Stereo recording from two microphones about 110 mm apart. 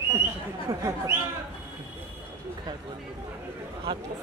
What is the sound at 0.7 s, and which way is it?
Speech, 30° right (ahead or behind).